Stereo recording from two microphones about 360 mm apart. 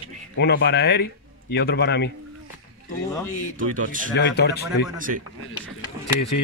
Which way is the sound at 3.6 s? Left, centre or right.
Right.